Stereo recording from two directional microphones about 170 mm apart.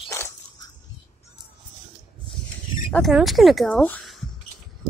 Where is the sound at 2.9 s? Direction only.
Centre (ahead or behind).